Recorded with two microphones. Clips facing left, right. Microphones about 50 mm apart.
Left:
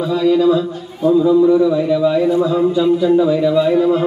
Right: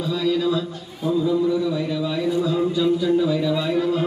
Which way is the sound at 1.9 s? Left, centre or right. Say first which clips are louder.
Left 9 dB; left.